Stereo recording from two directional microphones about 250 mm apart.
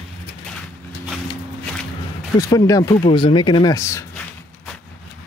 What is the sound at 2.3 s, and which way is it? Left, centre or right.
Speech, centre.